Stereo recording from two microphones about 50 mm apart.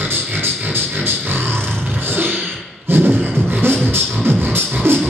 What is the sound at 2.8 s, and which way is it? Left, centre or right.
Beatboxing, right.